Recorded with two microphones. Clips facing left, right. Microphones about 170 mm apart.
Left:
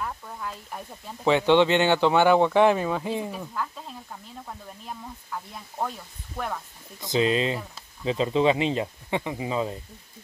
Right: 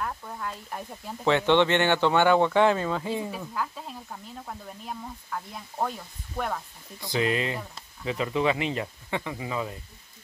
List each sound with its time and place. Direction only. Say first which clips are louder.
0.0 s speech: even; centre (ahead or behind)
1.2 s speech: left 2 dB; 15° left (ahead or behind)
3.3 s speech: even; centre (ahead or behind)
7.0 s speech: left 3 dB; 20° left (ahead or behind)